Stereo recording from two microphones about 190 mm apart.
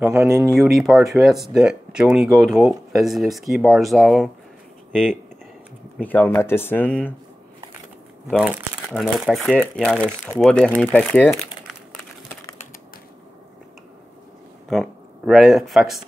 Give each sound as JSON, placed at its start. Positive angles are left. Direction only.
{"t": 0.0, "sound": "speech", "side_deg": -5}
{"t": 0.3, "sound": "speech", "side_deg": -15}
{"t": 0.6, "sound": "speech", "side_deg": 0}
{"t": 5.9, "sound": "speech", "side_deg": 10}
{"t": 8.3, "sound": "speech", "side_deg": -5}
{"t": 10.0, "sound": "speech", "side_deg": -5}
{"t": 10.7, "sound": "speech", "side_deg": 10}
{"t": 14.7, "sound": "speech", "side_deg": 0}